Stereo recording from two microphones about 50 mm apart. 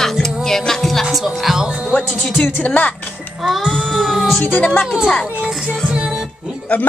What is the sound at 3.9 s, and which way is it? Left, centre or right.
Child singing, centre.